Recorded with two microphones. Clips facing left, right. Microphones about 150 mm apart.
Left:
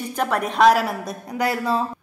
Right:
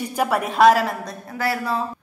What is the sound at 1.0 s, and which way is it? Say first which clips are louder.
Speech: left 2 dB; 20° left (ahead or behind).